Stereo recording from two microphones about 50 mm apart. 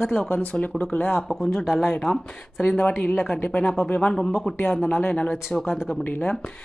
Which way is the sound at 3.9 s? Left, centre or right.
Left.